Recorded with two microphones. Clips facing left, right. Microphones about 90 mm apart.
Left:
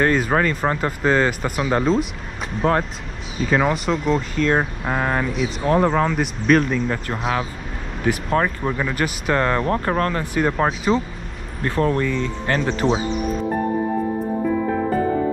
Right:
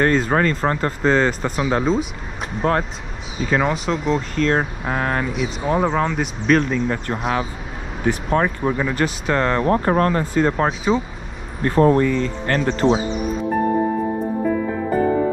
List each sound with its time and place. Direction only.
0.0 s speech: 5° left (ahead or behind)
8.9 s speech: 5° left (ahead or behind)
9.7 s speech: 35° right (ahead or behind)
10.3 s speech: 5° left (ahead or behind)
11.7 s speech: 35° right (ahead or behind)
12.4 s speech: centre (ahead or behind)